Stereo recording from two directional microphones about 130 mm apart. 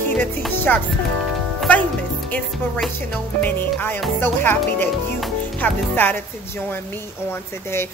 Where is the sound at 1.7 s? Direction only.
10° left (ahead or behind).